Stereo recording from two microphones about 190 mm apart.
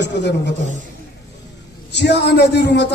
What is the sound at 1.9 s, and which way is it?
Speech, 60° left (ahead or behind).